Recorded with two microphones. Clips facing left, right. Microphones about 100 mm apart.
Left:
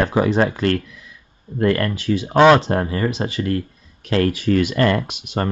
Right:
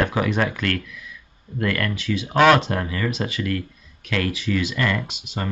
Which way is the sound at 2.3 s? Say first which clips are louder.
Left 4 dB; 25° left (ahead or behind).